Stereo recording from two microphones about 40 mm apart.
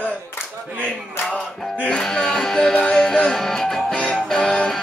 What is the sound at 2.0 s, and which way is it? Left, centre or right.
Music, centre.